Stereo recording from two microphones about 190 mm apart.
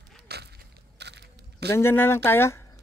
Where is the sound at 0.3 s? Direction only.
55° right (ahead or behind).